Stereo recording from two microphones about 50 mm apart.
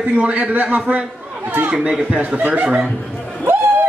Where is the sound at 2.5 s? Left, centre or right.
Right.